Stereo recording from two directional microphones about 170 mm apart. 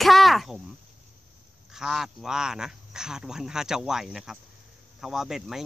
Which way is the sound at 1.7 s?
5° right (ahead or behind).